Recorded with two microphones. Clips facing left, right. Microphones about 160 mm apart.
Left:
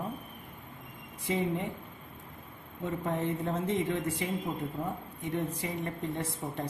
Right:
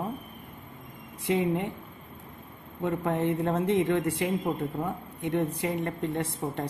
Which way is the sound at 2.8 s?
70° right (ahead or behind).